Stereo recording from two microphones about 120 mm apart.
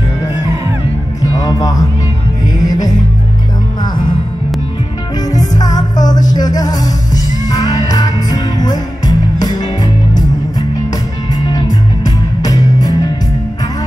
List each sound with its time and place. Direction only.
1.2 s music: 30° left (ahead or behind)
5.3 s music: 30° left (ahead or behind)
11.3 s music: 35° left (ahead or behind)